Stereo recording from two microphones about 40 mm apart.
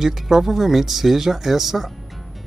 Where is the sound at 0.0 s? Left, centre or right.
Centre.